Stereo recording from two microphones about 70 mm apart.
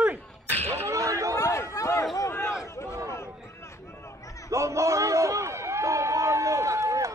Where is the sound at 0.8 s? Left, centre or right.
Right.